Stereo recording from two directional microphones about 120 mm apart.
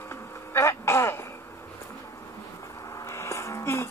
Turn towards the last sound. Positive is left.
turn(degrees=25)  # may be behind; listen again after turning